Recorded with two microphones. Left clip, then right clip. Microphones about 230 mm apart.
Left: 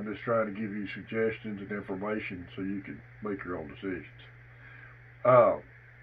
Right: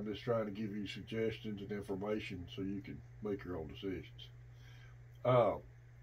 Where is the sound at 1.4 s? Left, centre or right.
Right.